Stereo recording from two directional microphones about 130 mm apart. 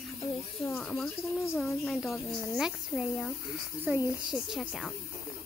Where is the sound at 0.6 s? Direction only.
Centre (ahead or behind).